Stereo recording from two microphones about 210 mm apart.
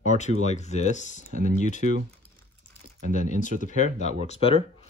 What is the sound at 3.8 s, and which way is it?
Speech, 30° left (ahead or behind).